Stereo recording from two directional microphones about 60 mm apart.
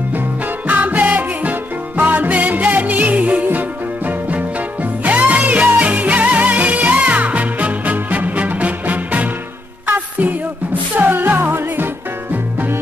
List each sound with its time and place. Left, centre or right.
0.7 s music: right